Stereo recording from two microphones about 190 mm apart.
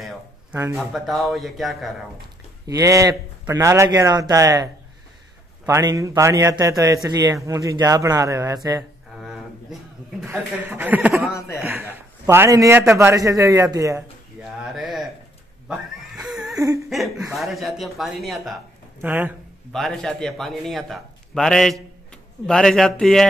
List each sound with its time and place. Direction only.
0.0 s a sound: 10° right (ahead or behind)
0.7 s a man's voice: centre (ahead or behind)
2.6 s a man's voice: 15° right (ahead or behind)
5.7 s a man's voice: 15° right (ahead or behind)
9.2 s a sound: 5° right (ahead or behind)
10.2 s a man's voice: 10° right (ahead or behind)
11.3 s speech: 15° left (ahead or behind)
11.6 s a man's voice: 10° right (ahead or behind)
14.4 s a sound: centre (ahead or behind)
15.7 s laughter: 5° right (ahead or behind)
16.5 s laughter: 20° right (ahead or behind)
17.3 s a man's voice: centre (ahead or behind)
18.9 s a man's voice: 10° right (ahead or behind)
19.7 s a man's voice: centre (ahead or behind)